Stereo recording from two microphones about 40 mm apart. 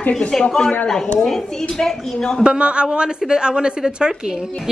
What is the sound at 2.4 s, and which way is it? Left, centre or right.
A woman's voice, right.